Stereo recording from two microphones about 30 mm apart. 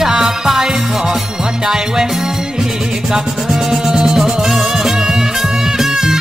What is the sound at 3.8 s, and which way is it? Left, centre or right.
Music, right.